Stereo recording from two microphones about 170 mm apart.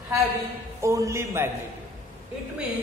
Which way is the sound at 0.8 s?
20° right (ahead or behind).